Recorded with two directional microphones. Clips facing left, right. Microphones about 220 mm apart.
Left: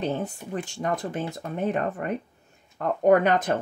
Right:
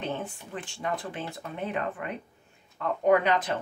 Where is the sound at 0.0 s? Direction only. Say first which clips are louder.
Left 5 dB; 40° left (ahead or behind).